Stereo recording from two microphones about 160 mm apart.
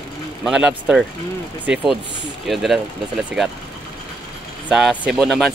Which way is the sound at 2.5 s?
Centre (ahead or behind).